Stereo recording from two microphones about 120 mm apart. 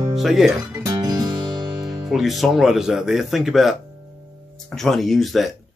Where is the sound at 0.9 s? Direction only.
35° right (ahead or behind).